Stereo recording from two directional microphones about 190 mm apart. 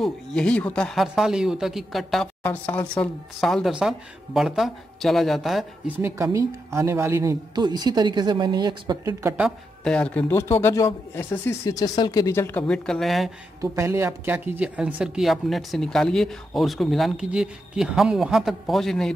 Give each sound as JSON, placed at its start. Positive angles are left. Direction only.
{"t": 0.0, "sound": "speech", "side_deg": 5}
{"t": 5.9, "sound": "a woman's voice", "side_deg": -15}
{"t": 9.8, "sound": "a woman's voice", "side_deg": 5}
{"t": 13.6, "sound": "speech", "side_deg": -15}